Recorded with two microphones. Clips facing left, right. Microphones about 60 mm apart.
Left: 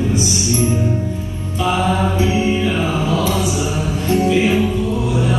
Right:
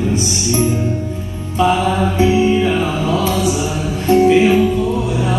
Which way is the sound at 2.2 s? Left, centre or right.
Right.